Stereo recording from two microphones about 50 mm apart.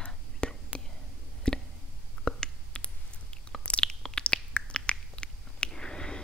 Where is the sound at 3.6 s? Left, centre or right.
Centre.